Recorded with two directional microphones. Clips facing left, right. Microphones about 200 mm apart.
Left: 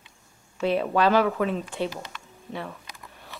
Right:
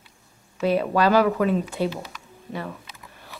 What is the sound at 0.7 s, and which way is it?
A woman's voice, 5° right (ahead or behind).